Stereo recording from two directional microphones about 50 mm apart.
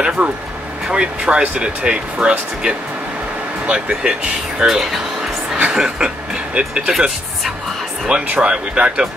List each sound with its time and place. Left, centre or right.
0.2 s speech: right
8.4 s speech: centre